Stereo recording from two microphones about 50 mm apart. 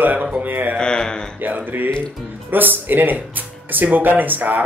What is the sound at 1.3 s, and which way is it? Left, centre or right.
Speech, right.